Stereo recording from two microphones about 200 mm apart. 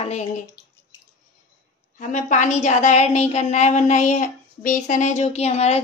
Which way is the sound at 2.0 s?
40° left (ahead or behind).